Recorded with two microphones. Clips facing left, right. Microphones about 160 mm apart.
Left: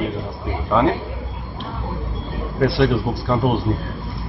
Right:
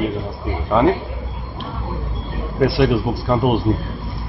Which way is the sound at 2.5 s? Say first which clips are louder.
Right 2 dB; 10° right (ahead or behind).